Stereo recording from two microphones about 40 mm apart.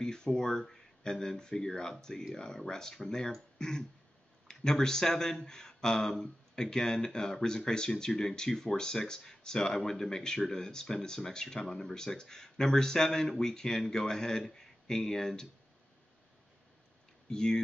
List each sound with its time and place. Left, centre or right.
0.0 s speech: centre
17.3 s speech: centre